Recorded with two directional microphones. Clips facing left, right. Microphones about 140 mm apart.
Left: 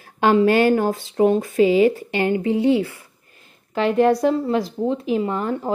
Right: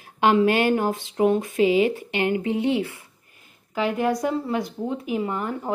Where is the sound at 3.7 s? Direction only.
10° right (ahead or behind).